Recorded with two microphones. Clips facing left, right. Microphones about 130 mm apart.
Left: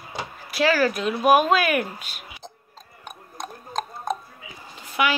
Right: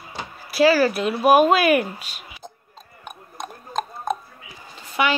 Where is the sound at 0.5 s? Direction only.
5° right (ahead or behind).